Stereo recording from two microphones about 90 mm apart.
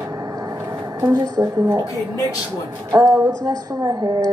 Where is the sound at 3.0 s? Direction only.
45° right (ahead or behind).